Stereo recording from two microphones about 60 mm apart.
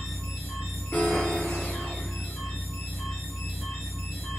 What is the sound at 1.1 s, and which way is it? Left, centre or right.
Music, centre.